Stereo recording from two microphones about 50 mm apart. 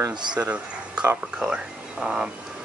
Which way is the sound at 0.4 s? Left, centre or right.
Right.